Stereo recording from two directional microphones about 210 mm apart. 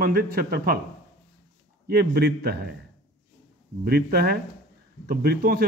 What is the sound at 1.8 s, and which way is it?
Speech, 45° right (ahead or behind).